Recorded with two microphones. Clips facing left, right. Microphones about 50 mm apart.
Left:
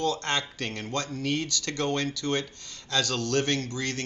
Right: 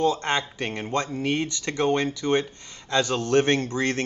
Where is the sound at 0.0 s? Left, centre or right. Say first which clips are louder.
Right 5 dB; right.